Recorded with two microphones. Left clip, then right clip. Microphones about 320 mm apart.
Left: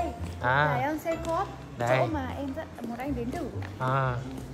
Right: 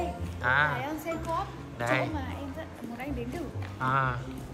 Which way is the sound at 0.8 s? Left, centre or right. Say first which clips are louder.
Left 4 dB; left.